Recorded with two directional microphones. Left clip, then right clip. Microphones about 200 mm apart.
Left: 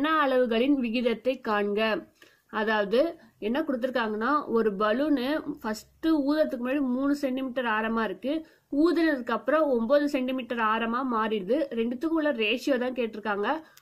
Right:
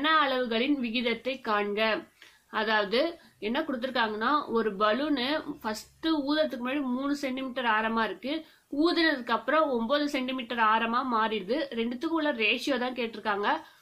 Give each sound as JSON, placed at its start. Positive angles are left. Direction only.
{"t": 0.0, "sound": "a woman's voice", "side_deg": 45}